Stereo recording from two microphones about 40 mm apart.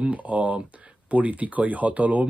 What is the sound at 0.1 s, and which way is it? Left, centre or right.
Speech, right.